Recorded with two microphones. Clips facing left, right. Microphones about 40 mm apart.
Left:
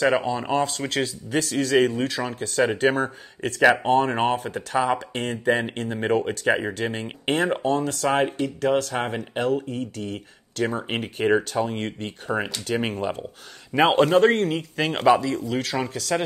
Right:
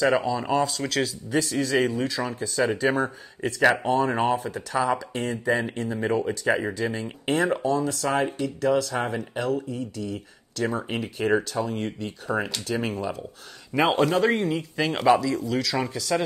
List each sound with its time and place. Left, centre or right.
0.0 s speech: left
12.3 s speech: centre
12.6 s a man's voice: left